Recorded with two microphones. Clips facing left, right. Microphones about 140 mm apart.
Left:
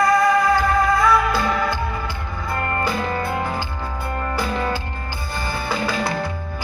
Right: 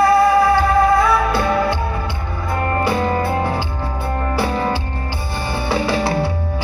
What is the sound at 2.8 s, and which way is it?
Music, 30° right (ahead or behind).